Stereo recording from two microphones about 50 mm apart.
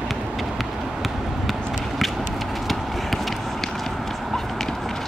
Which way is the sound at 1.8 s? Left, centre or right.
Centre.